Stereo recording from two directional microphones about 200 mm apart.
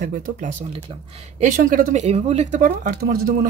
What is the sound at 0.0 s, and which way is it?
Speech, 40° right (ahead or behind).